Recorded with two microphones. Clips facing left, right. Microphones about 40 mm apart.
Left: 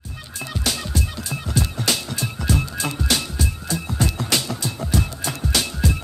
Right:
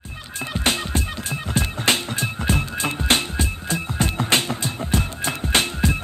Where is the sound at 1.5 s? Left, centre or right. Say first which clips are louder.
Right 2 dB; right.